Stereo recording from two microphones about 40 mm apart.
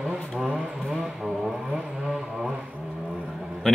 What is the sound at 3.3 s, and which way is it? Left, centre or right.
Vehicle, centre.